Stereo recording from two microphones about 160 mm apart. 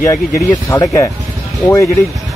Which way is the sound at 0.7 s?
20° left (ahead or behind).